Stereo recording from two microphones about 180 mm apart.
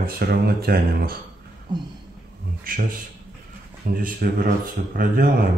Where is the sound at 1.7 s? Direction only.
25° right (ahead or behind).